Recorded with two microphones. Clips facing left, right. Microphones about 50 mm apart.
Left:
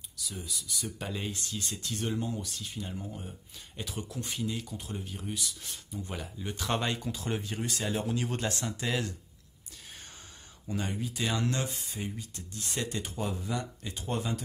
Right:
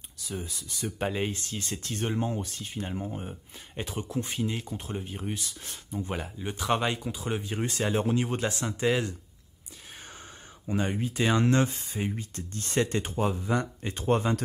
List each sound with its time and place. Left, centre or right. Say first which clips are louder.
0.2 s speech: right 4 dB; right
6.5 s speech: right 4 dB; centre
7.5 s speech: right 5 dB; right
10.7 s speech: right 5 dB; right